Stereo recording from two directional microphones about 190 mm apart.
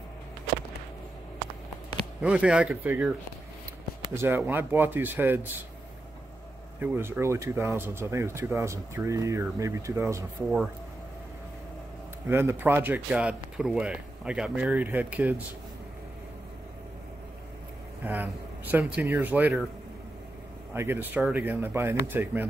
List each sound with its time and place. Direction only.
2.2 s speech: 5° right (ahead or behind)
6.8 s speech: 10° right (ahead or behind)
12.3 s speech: 15° right (ahead or behind)
18.0 s speech: 10° right (ahead or behind)
20.7 s speech: 10° right (ahead or behind)